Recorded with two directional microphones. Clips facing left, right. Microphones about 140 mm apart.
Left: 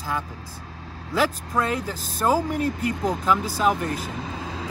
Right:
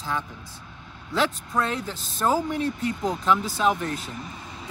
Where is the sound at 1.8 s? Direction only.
50° left (ahead or behind).